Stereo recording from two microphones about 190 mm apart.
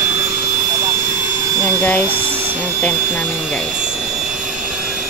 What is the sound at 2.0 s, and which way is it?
Vacuum cleaner, 10° right (ahead or behind).